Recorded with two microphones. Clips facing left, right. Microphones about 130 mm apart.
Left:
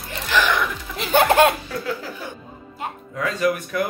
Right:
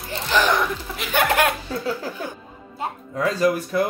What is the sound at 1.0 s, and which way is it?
Laughter, 30° left (ahead or behind).